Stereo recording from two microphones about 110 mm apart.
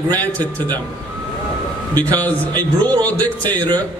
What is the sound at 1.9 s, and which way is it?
Speech, 15° left (ahead or behind).